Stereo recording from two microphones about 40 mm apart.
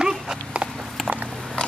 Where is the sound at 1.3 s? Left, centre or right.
Centre.